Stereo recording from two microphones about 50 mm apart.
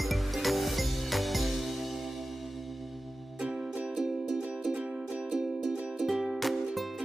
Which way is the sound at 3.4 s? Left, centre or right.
Centre.